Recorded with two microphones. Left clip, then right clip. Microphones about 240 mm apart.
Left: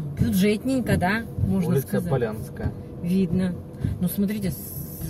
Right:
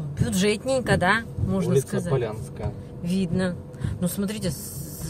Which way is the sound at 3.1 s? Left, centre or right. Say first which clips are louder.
Even; right.